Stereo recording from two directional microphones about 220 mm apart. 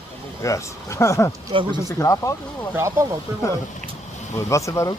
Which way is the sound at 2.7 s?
10° right (ahead or behind).